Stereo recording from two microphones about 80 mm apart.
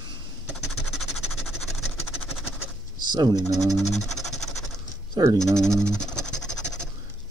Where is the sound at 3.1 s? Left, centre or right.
Right.